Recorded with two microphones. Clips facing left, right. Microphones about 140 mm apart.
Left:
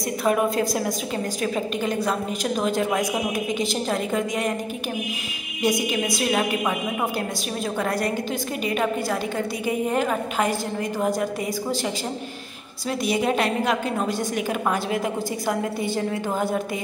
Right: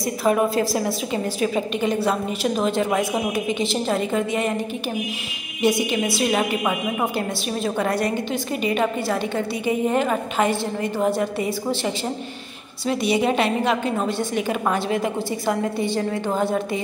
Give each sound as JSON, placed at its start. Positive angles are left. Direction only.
{"t": 0.2, "sound": "a woman's voice", "side_deg": 0}
{"t": 5.6, "sound": "a woman's voice", "side_deg": 0}